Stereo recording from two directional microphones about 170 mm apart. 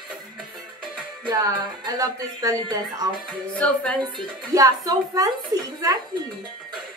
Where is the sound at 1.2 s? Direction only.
20° right (ahead or behind).